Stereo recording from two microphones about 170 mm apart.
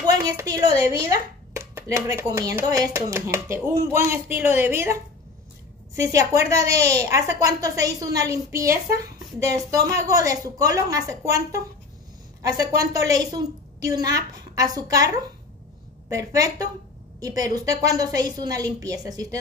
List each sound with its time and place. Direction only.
0.0 s speech: 25° right (ahead or behind)
5.9 s a woman's voice: 20° right (ahead or behind)
16.1 s a woman's voice: 20° right (ahead or behind)